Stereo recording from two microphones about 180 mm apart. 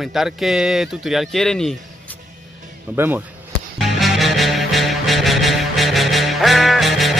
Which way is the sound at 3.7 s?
Centre (ahead or behind).